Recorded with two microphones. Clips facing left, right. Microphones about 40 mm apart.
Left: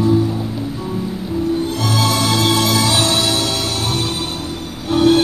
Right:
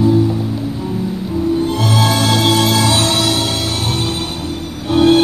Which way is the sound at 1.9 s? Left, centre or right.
Right.